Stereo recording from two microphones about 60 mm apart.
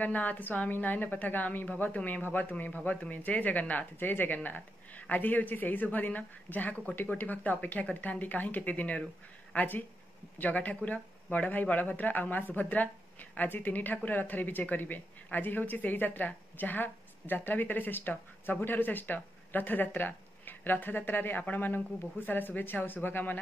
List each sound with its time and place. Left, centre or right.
0.0 s a woman's voice: left